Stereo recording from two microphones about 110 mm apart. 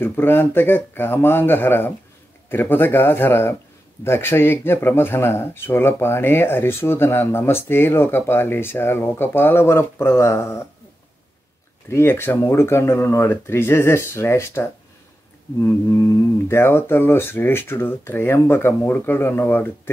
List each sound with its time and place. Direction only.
0.0 s speech: 20° left (ahead or behind)
11.9 s speech: 20° left (ahead or behind)